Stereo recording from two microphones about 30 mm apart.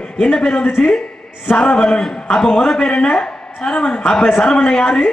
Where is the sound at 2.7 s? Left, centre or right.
Left.